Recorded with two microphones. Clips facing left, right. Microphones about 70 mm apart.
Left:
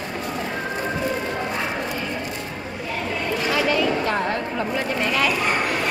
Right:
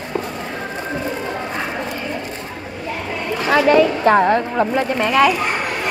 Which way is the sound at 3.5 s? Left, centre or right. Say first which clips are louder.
Right 9 dB; right.